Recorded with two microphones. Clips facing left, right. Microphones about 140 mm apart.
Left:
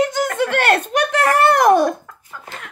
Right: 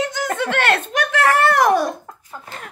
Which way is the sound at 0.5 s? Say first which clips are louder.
Left 3 dB; 40° left (ahead or behind).